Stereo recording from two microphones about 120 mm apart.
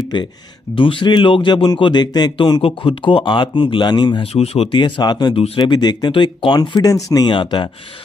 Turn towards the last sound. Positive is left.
turn(degrees=40)  # may be behind; listen again after turning